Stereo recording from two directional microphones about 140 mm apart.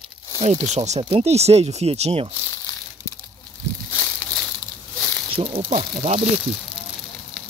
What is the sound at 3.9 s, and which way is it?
Snake, 10° left (ahead or behind).